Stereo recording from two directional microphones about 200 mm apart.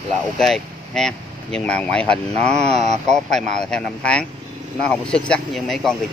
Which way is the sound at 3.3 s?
5° left (ahead or behind).